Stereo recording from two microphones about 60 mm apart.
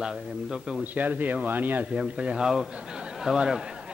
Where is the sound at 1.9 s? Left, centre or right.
Centre.